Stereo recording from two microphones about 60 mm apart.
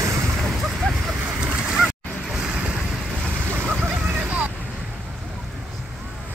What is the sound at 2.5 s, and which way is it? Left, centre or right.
Vehicle, centre.